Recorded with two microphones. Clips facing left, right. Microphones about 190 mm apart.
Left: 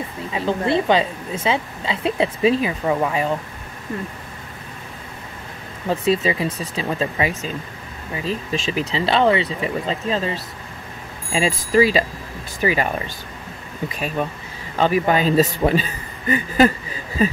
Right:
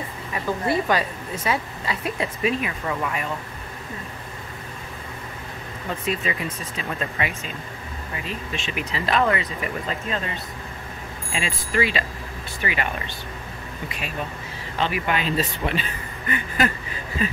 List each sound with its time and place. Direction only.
0.3 s a woman's voice: 25° left (ahead or behind)
5.9 s a woman's voice: 30° left (ahead or behind)
14.8 s speech: 40° left (ahead or behind)